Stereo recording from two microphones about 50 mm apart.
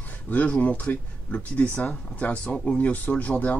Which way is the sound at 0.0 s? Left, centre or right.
Left.